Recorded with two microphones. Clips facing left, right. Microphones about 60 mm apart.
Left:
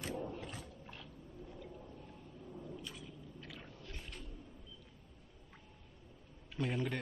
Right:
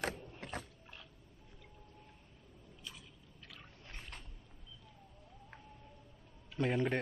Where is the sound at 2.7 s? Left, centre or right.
Centre.